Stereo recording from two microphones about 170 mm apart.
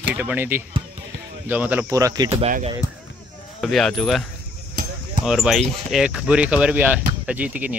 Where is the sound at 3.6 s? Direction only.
Centre (ahead or behind).